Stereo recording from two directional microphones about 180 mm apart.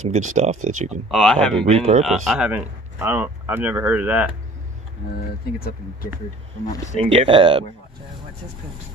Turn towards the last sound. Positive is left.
turn(degrees=-30)  # may be behind; listen again after turning